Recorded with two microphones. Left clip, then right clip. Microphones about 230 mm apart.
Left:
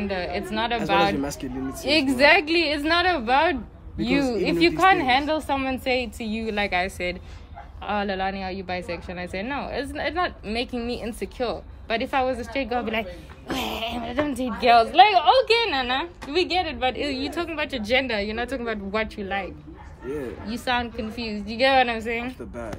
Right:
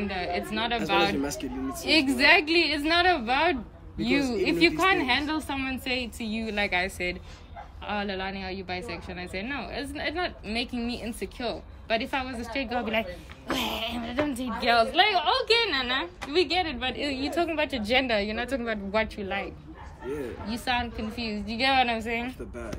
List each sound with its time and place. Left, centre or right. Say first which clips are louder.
0.0 s speech: left 2 dB; centre
1.2 s speech: left 2 dB; left
1.9 s a woman's voice: left 3 dB; centre